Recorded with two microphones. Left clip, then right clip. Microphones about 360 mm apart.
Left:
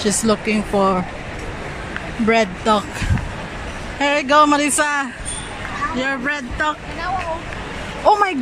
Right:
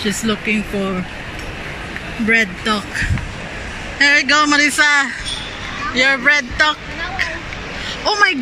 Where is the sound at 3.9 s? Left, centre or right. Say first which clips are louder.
Right 2 dB; centre.